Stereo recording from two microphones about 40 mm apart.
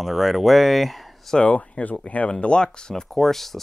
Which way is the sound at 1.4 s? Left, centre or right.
Left.